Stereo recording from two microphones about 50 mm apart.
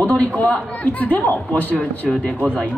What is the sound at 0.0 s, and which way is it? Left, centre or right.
A man's voice, left.